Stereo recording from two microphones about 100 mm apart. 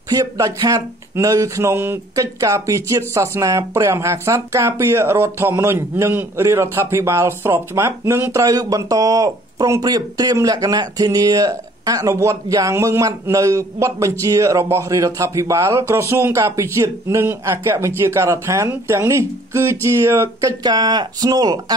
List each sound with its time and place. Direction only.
0.1 s speech: 35° right (ahead or behind)
20.6 s speech: 45° right (ahead or behind)